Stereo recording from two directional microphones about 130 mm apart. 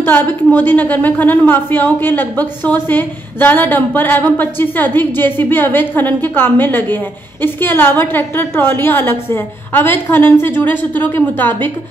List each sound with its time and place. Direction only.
0.0 s a woman's voice: 15° left (ahead or behind)